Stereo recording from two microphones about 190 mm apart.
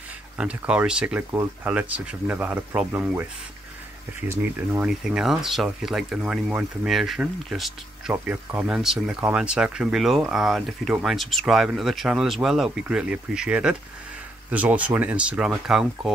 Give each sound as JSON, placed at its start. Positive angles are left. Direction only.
{"t": 0.4, "sound": "speech", "side_deg": -5}
{"t": 4.3, "sound": "speech", "side_deg": -5}